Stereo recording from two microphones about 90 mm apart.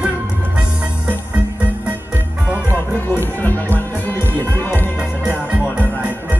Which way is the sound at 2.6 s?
25° left (ahead or behind).